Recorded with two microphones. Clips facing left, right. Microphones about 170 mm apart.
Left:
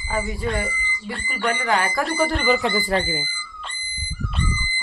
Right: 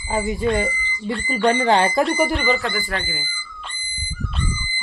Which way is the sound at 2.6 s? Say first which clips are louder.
Left 3 dB; 20° left (ahead or behind).